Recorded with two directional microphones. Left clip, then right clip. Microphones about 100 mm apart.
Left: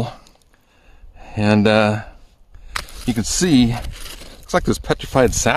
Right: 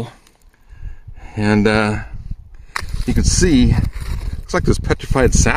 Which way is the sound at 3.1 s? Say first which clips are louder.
Right 1 dB; 5° left (ahead or behind).